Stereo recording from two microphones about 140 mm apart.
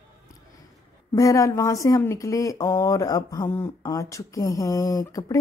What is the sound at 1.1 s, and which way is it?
Speech, 25° left (ahead or behind).